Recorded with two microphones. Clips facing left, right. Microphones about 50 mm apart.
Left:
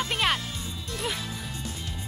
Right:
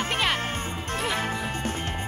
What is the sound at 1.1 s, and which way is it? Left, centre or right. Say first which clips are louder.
Music: right 8 dB; right.